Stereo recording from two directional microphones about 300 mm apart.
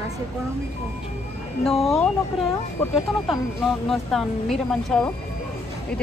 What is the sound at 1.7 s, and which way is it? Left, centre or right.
Speech, centre.